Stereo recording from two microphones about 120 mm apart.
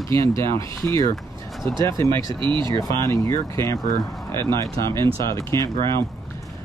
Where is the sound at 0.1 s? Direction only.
25° left (ahead or behind).